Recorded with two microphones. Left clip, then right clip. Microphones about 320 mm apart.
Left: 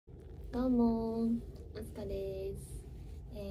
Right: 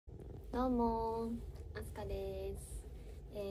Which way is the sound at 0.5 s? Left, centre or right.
Left.